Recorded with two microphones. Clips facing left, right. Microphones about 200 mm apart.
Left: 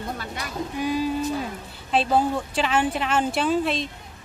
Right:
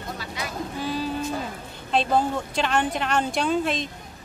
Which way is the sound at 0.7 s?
15° left (ahead or behind).